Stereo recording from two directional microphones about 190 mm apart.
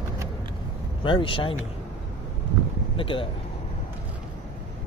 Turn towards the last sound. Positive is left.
turn(degrees=30)  # may be behind; listen again after turning